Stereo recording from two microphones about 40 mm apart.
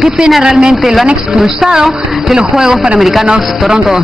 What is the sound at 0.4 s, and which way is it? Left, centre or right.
A man's voice, centre.